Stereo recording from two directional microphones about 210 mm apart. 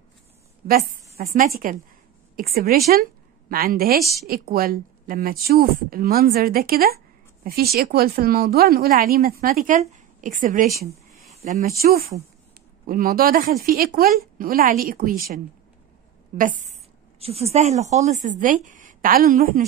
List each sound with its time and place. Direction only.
0.7 s a woman's voice: 45° right (ahead or behind)